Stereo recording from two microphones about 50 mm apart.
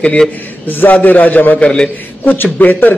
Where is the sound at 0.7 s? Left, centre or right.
Left.